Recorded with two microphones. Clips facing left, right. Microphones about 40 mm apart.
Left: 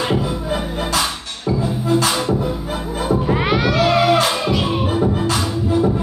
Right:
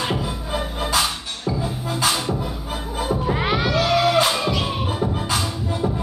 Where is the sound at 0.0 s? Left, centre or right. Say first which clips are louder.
Left 5 dB; centre.